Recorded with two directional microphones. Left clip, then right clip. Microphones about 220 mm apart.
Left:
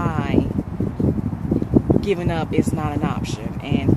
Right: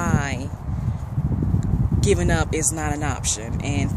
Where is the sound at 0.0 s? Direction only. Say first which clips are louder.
Left 1 dB; 10° right (ahead or behind).